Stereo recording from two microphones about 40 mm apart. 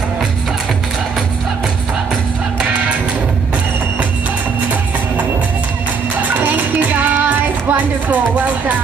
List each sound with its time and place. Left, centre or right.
6.2 s music: right